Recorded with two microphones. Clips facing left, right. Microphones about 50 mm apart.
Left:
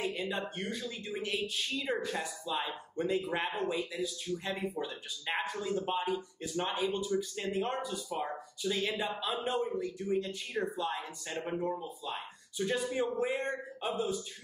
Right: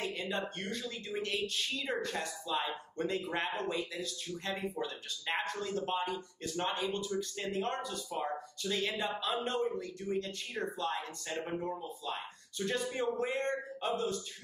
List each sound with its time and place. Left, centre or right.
0.0 s speech: centre